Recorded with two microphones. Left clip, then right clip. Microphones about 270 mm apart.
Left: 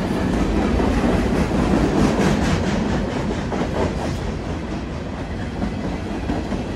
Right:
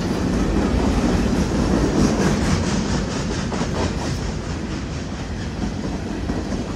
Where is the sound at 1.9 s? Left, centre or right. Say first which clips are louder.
Left 1 dB; left.